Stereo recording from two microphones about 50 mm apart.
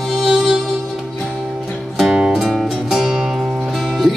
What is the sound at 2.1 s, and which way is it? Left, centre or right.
Music, centre.